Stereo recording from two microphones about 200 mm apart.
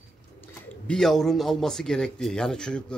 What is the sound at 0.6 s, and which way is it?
Speech, 5° left (ahead or behind).